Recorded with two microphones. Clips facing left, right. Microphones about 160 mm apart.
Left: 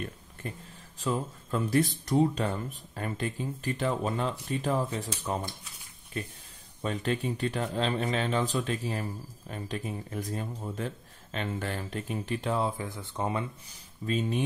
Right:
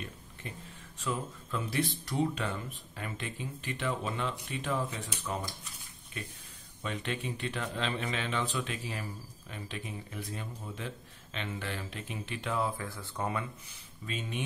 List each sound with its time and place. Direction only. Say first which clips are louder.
0.9 s speech: left 5 dB; 35° left (ahead or behind)
6.8 s speech: left 6 dB; 40° left (ahead or behind)
14.0 s speech: left 9 dB; 35° left (ahead or behind)